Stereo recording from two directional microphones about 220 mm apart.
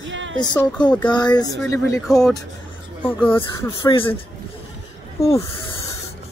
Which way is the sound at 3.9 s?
25° left (ahead or behind).